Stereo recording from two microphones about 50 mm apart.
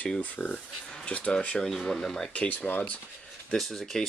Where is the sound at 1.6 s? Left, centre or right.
Centre.